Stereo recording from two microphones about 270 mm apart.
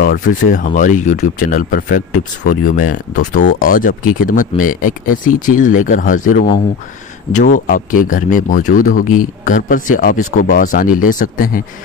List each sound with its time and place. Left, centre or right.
0.0 s speech: left